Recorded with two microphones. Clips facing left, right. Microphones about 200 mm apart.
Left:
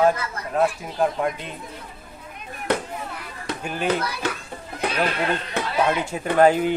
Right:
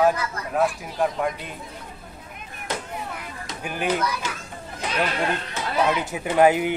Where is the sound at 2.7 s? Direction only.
60° left (ahead or behind).